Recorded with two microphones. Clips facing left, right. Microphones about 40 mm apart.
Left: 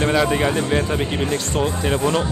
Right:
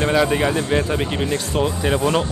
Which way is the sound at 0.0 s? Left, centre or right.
Centre.